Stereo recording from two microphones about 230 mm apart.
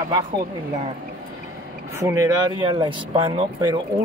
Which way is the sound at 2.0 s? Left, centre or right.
Centre.